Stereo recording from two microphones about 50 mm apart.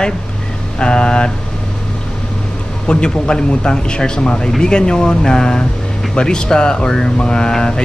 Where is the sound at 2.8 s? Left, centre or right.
Centre.